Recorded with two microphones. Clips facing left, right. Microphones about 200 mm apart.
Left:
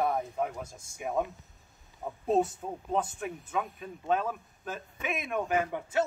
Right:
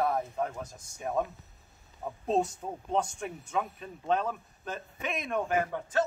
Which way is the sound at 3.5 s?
5° left (ahead or behind).